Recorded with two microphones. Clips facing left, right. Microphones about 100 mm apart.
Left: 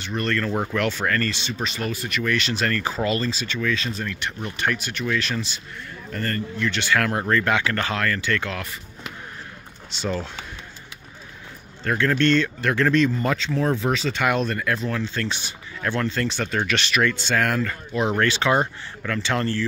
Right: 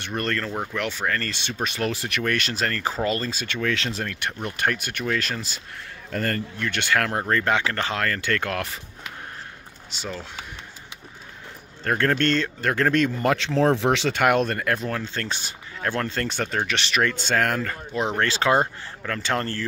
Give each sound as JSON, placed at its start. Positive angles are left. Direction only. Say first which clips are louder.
{"t": 0.0, "sound": "speech", "louder": "left 2 dB", "side_deg": -50}
{"t": 0.7, "sound": "speech", "louder": "left 2 dB", "side_deg": -15}
{"t": 1.3, "sound": "speech", "louder": "even", "side_deg": -55}
{"t": 3.6, "sound": "speech", "louder": "even", "side_deg": -75}
{"t": 4.1, "sound": "speech", "louder": "even", "side_deg": -55}
{"t": 6.1, "sound": "speech", "louder": "right 2 dB", "side_deg": -90}
{"t": 6.6, "sound": "speech", "louder": "left 2 dB", "side_deg": -50}
{"t": 7.1, "sound": "speech", "louder": "left 1 dB", "side_deg": -30}
{"t": 8.0, "sound": "speech", "louder": "left 1 dB", "side_deg": -45}
{"t": 11.8, "sound": "speech", "louder": "left 1 dB", "side_deg": -50}
{"t": 16.6, "sound": "speech", "louder": "left 2 dB", "side_deg": -25}
{"t": 17.0, "sound": "speech", "louder": "right 1 dB", "side_deg": -40}